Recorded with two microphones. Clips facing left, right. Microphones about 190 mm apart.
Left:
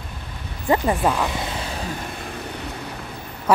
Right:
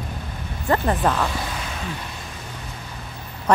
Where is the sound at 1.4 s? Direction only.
30° left (ahead or behind).